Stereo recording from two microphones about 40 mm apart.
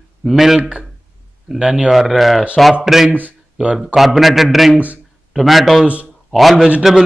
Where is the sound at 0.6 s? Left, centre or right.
Right.